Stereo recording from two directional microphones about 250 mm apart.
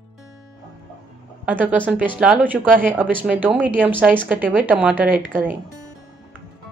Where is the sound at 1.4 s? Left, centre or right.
Centre.